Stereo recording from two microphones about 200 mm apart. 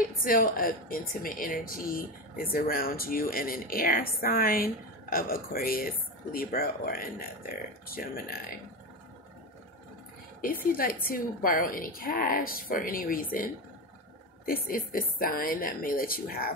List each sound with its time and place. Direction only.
0.0 s a woman's voice: 45° left (ahead or behind)
10.4 s a woman's voice: 45° left (ahead or behind)
14.4 s a woman's voice: 45° left (ahead or behind)